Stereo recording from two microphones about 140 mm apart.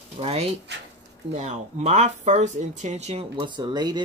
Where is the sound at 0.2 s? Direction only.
45° right (ahead or behind).